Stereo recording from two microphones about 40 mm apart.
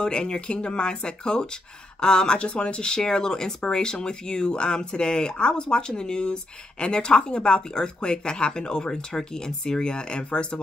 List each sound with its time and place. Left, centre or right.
0.0 s speech: left